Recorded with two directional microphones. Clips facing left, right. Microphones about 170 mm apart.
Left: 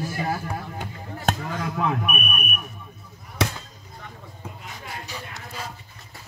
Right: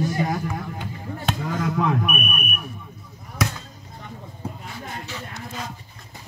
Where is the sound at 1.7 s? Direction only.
Centre (ahead or behind).